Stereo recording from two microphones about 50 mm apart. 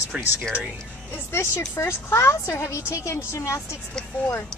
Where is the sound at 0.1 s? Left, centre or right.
Right.